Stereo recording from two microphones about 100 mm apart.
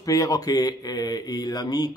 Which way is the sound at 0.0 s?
35° left (ahead or behind).